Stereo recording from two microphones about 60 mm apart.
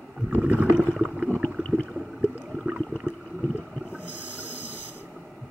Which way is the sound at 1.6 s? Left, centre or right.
Left.